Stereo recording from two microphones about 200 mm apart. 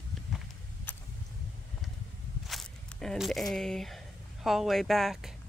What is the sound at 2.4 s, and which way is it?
Speech, centre (ahead or behind).